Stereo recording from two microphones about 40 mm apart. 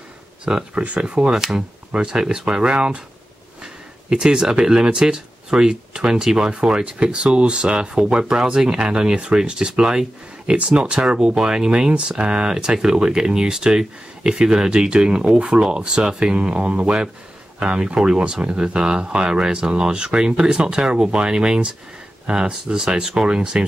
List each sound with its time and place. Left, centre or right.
0.5 s speech: right
1.9 s speech: right
2.1 s speech: centre